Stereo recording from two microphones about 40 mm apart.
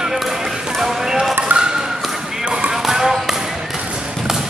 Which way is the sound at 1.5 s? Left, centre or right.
Centre.